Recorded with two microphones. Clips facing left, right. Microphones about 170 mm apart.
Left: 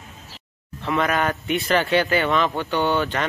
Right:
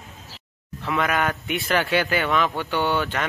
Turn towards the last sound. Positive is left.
turn(degrees=-10)  # may be behind; listen again after turning